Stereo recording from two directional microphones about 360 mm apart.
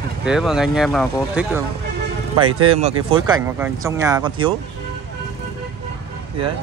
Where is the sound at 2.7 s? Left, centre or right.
Centre.